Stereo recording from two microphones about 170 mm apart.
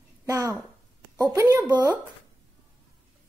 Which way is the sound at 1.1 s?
20° right (ahead or behind).